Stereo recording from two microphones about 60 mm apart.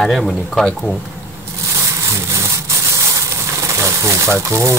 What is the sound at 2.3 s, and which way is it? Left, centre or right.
Wood, right.